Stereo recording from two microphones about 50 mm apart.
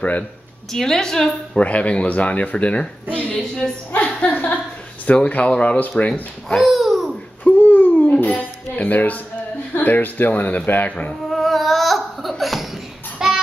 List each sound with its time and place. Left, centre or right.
0.7 s a woman's voice: centre
1.6 s a woman's voice: left
4.2 s a sound: left
5.0 s speech: left
6.6 s babbling: centre
7.4 s a sound: left
8.2 s music: left
9.8 s speech: left
11.2 s laughter: centre
13.2 s child singing: centre